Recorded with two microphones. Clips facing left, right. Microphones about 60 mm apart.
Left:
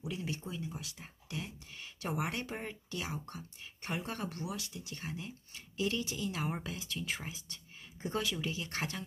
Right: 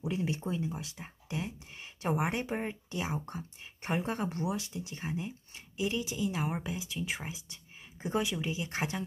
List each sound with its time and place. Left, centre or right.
0.0 s speech: right